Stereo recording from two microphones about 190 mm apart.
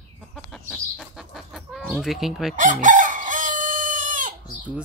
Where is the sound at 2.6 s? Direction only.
45° right (ahead or behind).